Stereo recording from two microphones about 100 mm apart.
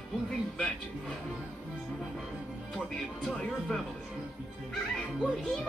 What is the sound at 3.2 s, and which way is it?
Speech, 5° left (ahead or behind).